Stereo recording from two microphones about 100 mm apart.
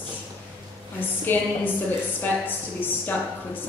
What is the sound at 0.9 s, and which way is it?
A woman's voice, 20° left (ahead or behind).